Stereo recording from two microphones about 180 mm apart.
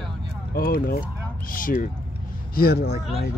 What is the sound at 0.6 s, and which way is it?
Speech, 55° left (ahead or behind).